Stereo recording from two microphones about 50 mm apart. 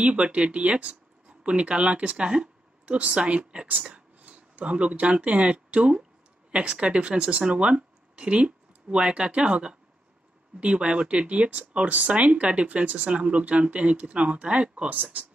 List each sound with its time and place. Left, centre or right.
0.0 s speech: right